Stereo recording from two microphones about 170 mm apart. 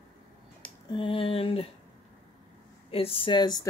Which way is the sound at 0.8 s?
30° left (ahead or behind).